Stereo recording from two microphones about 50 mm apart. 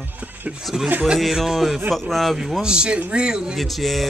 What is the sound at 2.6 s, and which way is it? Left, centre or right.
Speech, centre.